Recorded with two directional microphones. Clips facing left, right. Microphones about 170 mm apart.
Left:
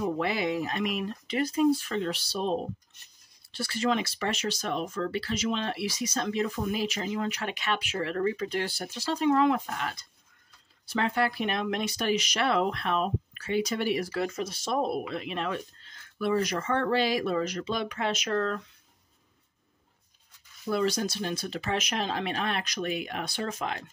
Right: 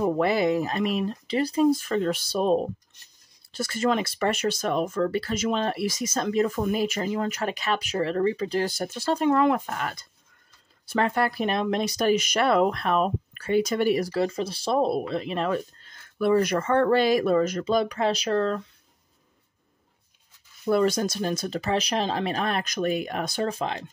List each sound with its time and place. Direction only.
0.0 s speech: 45° right (ahead or behind)
16.2 s speech: 55° right (ahead or behind); by 18.6 s 30° right (ahead or behind)
20.6 s speech: 50° right (ahead or behind); by 23.9 s 30° right (ahead or behind)